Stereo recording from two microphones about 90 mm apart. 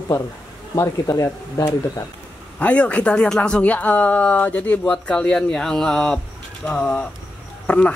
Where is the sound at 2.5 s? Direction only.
15° left (ahead or behind).